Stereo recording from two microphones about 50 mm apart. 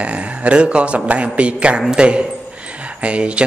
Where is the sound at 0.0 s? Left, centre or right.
Right.